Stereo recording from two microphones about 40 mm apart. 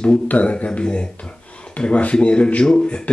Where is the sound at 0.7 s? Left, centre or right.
Left.